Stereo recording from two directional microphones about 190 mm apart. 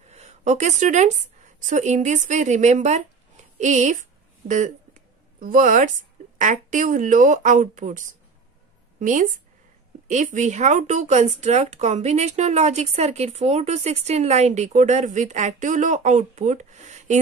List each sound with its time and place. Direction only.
0.1 s a woman's voice: 35° right (ahead or behind)